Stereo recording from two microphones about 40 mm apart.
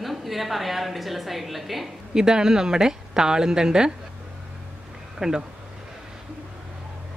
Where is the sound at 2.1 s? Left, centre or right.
Centre.